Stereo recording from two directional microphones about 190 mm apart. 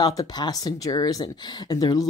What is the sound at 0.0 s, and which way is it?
Speech, 20° left (ahead or behind).